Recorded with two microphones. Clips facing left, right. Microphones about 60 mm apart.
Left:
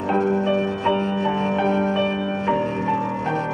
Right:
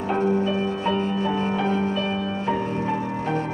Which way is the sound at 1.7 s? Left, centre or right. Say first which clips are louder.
Left 3 dB; left.